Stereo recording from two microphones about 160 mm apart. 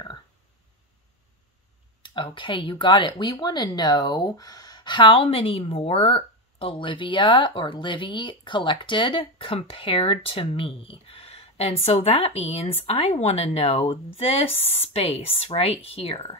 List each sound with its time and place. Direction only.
2.3 s speech: 30° left (ahead or behind)